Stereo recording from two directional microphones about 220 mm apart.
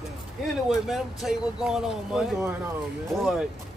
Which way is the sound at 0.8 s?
Centre (ahead or behind).